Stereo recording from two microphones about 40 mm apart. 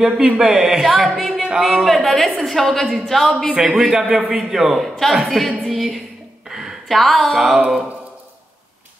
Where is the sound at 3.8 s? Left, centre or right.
Centre.